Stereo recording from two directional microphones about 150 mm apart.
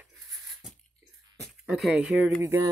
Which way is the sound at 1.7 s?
Centre (ahead or behind).